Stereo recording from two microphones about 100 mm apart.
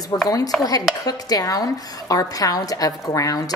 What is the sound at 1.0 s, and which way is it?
A woman's voice, 40° left (ahead or behind).